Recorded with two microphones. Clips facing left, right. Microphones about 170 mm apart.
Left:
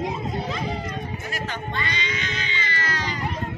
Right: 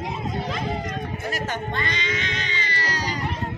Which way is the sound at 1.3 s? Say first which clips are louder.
Right 3 dB; 45° right (ahead or behind).